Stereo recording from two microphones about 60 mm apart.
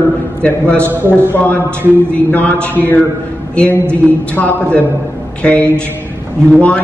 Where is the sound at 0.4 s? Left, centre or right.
Left.